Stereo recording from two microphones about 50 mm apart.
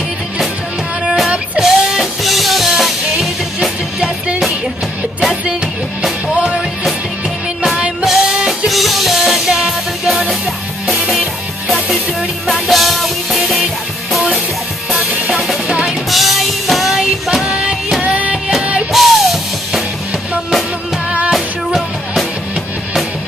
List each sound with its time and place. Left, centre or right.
1.6 s music: centre
8.0 s music: centre
12.6 s music: centre
15.0 s music: right
16.1 s music: centre
17.6 s music: right
18.9 s music: centre
21.3 s music: centre